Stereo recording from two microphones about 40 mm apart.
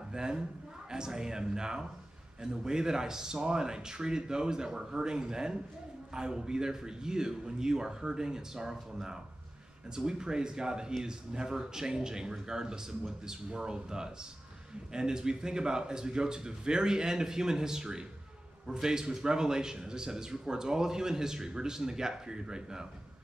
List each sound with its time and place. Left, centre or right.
0.1 s a man's voice: centre
9.9 s a man's voice: centre